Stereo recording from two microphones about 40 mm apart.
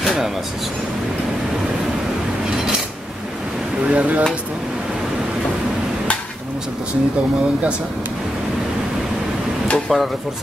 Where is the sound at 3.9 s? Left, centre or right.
Right.